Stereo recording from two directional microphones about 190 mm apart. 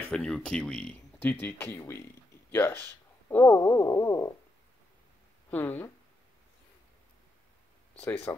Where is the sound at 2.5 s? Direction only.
10° left (ahead or behind).